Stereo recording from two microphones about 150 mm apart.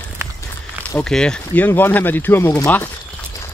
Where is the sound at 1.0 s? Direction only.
5° left (ahead or behind).